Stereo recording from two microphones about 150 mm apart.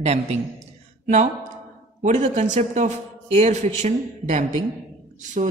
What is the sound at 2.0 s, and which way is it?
A man's voice, 50° right (ahead or behind).